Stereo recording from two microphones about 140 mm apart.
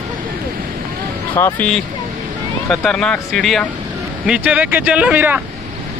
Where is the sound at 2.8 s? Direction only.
10° left (ahead or behind).